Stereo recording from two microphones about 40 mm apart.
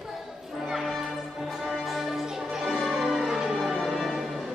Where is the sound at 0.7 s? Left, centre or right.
Centre.